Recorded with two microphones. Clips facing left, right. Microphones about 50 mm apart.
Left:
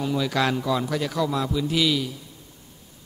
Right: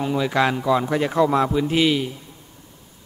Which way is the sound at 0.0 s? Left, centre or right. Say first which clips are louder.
Right 3 dB; right.